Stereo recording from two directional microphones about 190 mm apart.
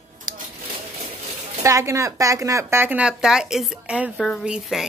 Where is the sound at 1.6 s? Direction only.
15° right (ahead or behind).